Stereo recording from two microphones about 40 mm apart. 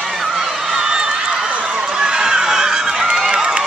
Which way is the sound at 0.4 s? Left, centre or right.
Centre.